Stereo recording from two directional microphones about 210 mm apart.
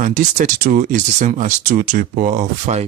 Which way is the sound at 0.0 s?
35° right (ahead or behind).